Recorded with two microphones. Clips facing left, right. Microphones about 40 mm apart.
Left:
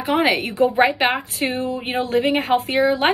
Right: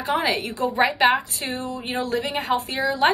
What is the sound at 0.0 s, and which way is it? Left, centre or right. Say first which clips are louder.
A woman's voice: left 4 dB; left.